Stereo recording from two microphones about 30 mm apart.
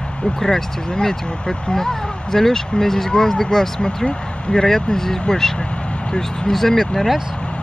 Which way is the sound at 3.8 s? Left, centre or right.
Left.